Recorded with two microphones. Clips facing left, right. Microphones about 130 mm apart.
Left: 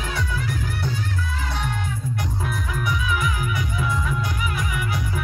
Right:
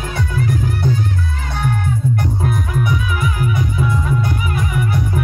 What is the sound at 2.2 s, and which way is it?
Music, 50° right (ahead or behind).